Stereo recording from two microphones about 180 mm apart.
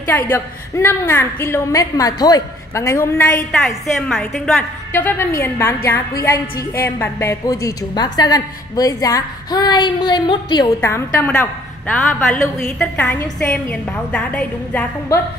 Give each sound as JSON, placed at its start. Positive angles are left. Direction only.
{"t": 0.0, "sound": "a woman's voice", "side_deg": 15}
{"t": 3.6, "sound": "a woman's voice", "side_deg": 0}
{"t": 4.9, "sound": "a woman's voice", "side_deg": 10}
{"t": 10.8, "sound": "a woman's voice", "side_deg": 10}